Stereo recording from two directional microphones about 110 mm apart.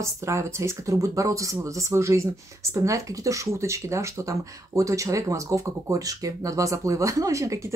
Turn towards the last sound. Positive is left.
turn(degrees=-30)  # may be behind; listen again after turning